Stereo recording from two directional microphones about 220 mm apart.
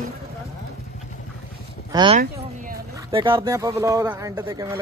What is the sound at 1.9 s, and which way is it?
Speech, 20° right (ahead or behind).